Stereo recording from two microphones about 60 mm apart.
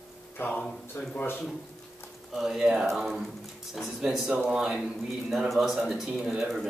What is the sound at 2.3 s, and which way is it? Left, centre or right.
A man's voice, centre.